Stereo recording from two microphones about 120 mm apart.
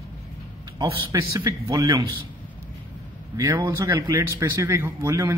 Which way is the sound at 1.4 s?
30° right (ahead or behind).